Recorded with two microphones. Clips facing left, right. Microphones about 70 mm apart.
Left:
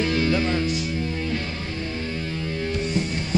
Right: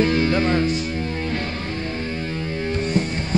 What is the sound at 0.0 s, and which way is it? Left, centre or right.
Music, right.